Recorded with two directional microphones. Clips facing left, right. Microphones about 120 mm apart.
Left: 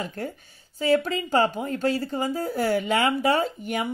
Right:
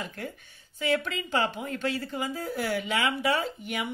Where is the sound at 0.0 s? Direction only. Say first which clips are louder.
Left 5 dB; 40° left (ahead or behind).